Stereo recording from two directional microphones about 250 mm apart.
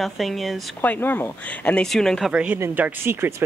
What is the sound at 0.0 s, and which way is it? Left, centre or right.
A woman's voice, centre.